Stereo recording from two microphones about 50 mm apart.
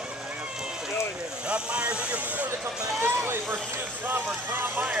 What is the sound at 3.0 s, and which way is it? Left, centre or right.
Speech, right.